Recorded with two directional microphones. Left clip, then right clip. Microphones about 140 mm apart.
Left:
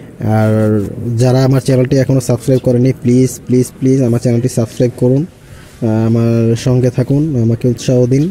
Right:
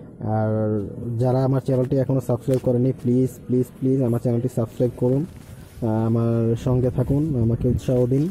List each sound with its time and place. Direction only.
0.2 s speech: 75° left (ahead or behind); by 0.8 s 55° left (ahead or behind)
1.1 s speech: 30° left (ahead or behind); by 8.2 s 10° left (ahead or behind)